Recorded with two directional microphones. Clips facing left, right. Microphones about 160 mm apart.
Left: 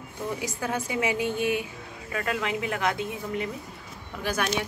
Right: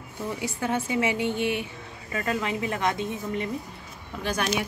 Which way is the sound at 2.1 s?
Centre (ahead or behind).